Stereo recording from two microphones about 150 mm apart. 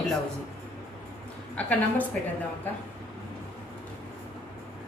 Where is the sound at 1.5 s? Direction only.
10° left (ahead or behind).